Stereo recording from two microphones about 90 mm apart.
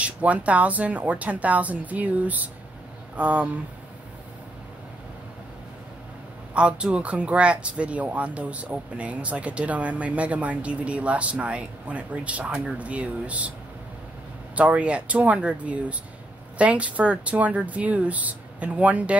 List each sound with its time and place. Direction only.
0.0 s speech: 15° right (ahead or behind)
6.5 s speech: 10° right (ahead or behind)
14.5 s speech: 15° right (ahead or behind)